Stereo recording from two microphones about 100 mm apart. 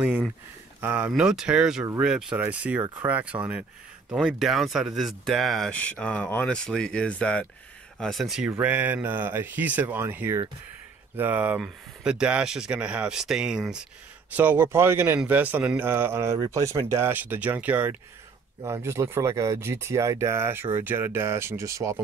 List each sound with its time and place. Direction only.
0.7 s speech: 15° right (ahead or behind)
1.1 s speech: 5° right (ahead or behind)
4.3 s speech: centre (ahead or behind)
5.7 s speech: 10° left (ahead or behind)
8.0 s speech: centre (ahead or behind)
14.3 s speech: 20° right (ahead or behind)
18.6 s speech: 25° right (ahead or behind)